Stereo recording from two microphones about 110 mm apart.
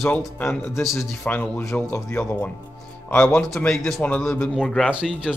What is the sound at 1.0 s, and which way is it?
Speech, 15° left (ahead or behind).